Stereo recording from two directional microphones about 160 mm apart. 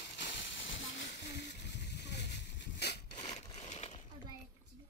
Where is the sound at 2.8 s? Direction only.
90° left.